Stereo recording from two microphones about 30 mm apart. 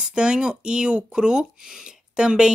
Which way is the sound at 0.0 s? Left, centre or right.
Right.